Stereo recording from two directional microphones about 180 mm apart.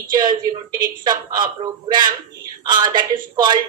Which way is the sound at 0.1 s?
25° right (ahead or behind).